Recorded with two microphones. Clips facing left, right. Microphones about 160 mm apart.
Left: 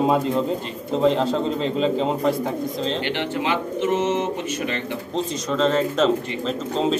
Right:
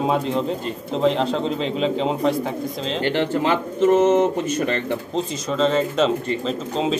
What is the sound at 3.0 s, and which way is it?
Speech, 45° right (ahead or behind).